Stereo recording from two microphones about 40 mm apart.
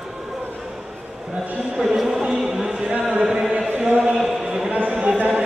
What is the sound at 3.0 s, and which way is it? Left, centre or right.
Chant, centre.